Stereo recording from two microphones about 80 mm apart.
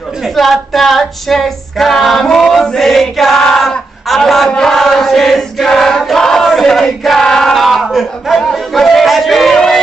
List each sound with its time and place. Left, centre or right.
0.2 s female singing: centre